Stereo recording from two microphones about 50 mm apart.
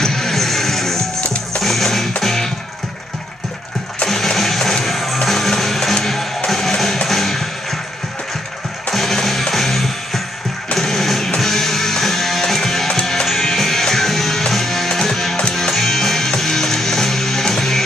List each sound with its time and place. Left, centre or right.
0.0 s music: centre
1.2 s music: left
1.6 s music: centre
4.1 s music: centre
8.9 s music: centre